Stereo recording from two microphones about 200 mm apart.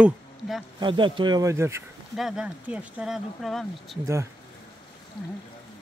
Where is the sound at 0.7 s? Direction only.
25° right (ahead or behind).